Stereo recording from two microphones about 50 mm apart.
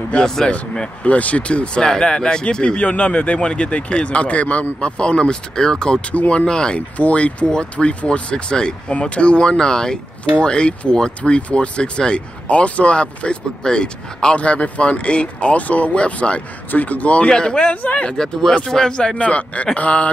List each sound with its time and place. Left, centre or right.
0.1 s speech: centre
0.5 s speech: left
18.1 s speech: centre